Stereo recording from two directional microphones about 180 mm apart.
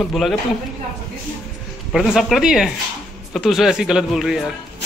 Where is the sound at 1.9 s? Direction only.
Centre (ahead or behind).